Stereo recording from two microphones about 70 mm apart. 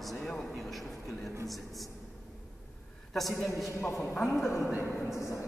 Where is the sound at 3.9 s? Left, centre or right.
Centre.